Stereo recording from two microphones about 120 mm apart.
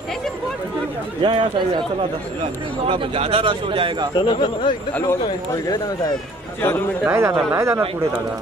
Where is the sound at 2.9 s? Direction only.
50° right (ahead or behind).